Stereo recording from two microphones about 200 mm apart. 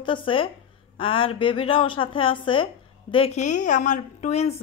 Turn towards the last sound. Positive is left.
turn(degrees=35)  # may be behind; listen again after turning